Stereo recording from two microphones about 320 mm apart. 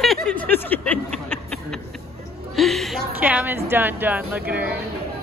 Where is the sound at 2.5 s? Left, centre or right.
Centre.